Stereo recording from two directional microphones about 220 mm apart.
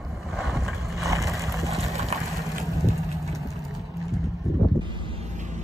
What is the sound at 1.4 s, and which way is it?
Vehicle, 15° right (ahead or behind).